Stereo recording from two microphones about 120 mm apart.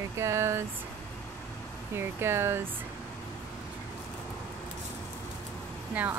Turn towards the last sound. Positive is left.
turn(degrees=-15)  # may be behind; listen again after turning